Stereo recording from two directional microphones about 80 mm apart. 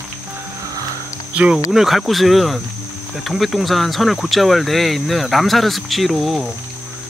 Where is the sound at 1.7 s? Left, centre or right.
Centre.